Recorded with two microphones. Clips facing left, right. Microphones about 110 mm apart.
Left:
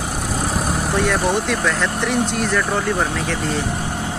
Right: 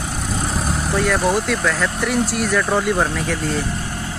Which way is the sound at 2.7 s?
15° right (ahead or behind).